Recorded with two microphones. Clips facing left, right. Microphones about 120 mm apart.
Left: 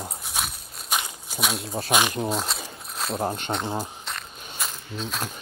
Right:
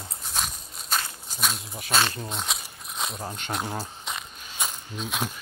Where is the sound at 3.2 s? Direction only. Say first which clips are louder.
Left 8 dB; 40° left (ahead or behind).